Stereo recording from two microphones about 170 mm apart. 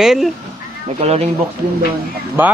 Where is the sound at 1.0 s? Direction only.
35° right (ahead or behind).